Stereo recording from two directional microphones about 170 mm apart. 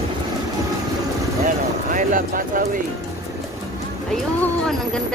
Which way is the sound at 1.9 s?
50° right (ahead or behind).